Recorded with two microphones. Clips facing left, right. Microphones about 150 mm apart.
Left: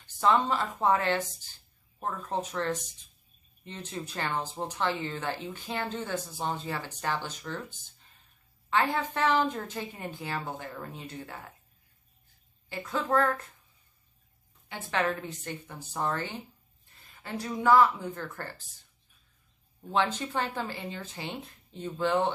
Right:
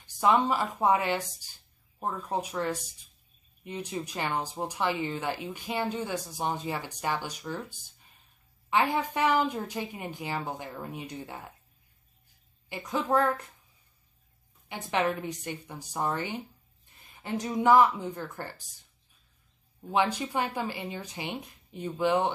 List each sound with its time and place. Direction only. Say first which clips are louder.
0.0 s speech: right 1 dB; 15° right (ahead or behind)
12.6 s speech: right 1 dB; 15° right (ahead or behind)
14.7 s speech: right 1 dB; 15° right (ahead or behind)
19.9 s speech: right 1 dB; 10° right (ahead or behind)